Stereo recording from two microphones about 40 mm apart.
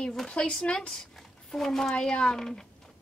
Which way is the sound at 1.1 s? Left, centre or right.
Centre.